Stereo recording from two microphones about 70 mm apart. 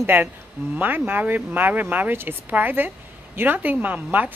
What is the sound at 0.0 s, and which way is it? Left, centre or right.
A woman's voice, right.